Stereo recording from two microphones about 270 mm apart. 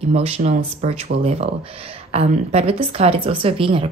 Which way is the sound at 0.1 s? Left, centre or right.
Right.